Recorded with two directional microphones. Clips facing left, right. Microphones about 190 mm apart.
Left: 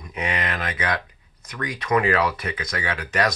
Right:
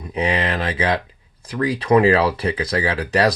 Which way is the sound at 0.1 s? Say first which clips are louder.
Right 6 dB; 30° right (ahead or behind).